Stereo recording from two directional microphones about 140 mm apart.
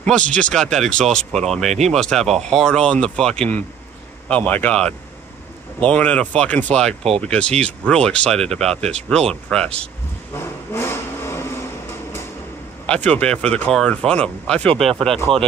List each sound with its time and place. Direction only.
0.0 s speech: 5° left (ahead or behind)
10.3 s vehicle: 20° left (ahead or behind)
12.8 s speech: 10° left (ahead or behind)
15.3 s speech: 40° right (ahead or behind)